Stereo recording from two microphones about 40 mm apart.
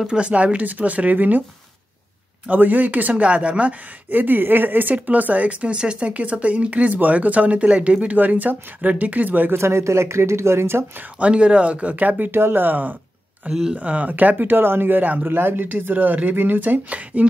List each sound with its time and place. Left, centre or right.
0.0 s speech: right
2.5 s speech: right
4.1 s speech: right
4.9 s speech: right
8.2 s speech: right
9.5 s speech: right
11.1 s speech: right
12.3 s speech: right
13.4 s speech: right
14.5 s speech: right